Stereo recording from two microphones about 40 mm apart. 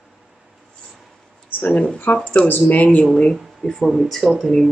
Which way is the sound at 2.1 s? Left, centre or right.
Left.